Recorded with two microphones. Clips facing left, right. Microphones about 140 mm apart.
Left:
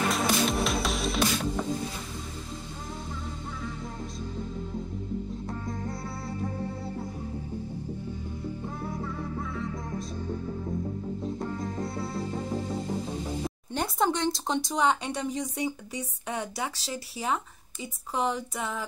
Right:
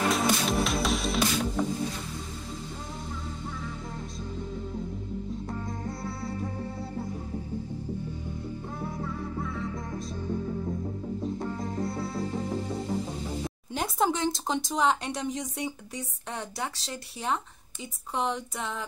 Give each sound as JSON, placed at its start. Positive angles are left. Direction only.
{"t": 0.1, "sound": "music", "side_deg": 0}
{"t": 13.7, "sound": "speech", "side_deg": 0}